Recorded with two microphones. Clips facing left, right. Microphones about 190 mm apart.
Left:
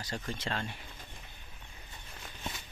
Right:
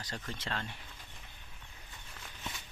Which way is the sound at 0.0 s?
10° left (ahead or behind).